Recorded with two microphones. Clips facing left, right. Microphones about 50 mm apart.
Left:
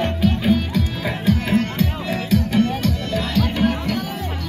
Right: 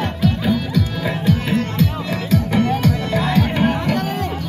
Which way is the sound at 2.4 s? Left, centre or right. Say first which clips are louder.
Right 2 dB; right.